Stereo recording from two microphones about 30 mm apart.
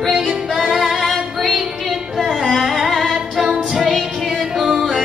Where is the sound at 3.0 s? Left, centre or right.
Centre.